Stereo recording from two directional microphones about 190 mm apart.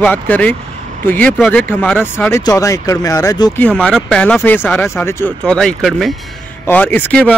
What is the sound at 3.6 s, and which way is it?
Speech, 5° left (ahead or behind).